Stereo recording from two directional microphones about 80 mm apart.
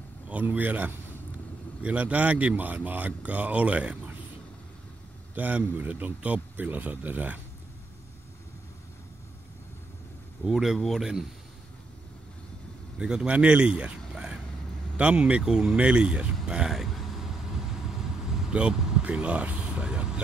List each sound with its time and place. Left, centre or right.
0.3 s speech: centre
5.3 s speech: right
10.4 s speech: centre
13.0 s speech: centre
15.0 s a sound: centre